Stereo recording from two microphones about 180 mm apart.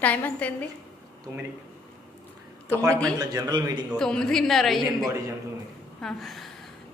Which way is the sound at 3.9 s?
5° left (ahead or behind).